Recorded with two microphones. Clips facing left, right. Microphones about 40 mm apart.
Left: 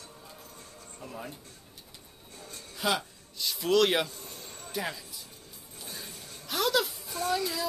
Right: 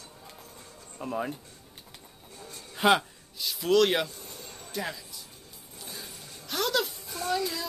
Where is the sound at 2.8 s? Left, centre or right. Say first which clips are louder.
Right 7 dB; right.